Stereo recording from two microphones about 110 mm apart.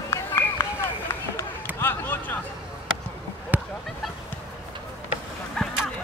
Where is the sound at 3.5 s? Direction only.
15° right (ahead or behind).